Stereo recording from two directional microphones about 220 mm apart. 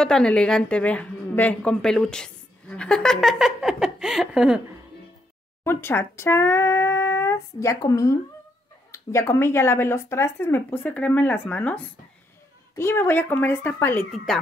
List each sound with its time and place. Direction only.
0.0 s a woman's voice: 5° left (ahead or behind)
5.6 s a woman's voice: 10° left (ahead or behind)